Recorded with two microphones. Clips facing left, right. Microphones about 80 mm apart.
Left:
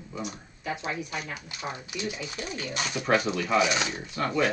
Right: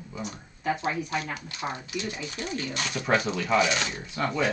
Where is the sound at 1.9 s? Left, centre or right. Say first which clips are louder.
Right 1 dB; centre.